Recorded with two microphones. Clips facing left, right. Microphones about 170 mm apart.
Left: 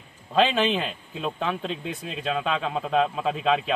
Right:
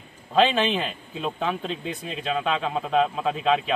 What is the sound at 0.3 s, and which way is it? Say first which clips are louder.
A man's voice: right 1 dB; centre (ahead or behind).